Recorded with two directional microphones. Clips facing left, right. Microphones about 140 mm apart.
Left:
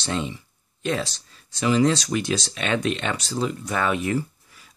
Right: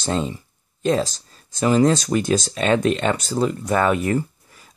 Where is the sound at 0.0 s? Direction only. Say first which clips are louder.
Right 4 dB; 40° right (ahead or behind).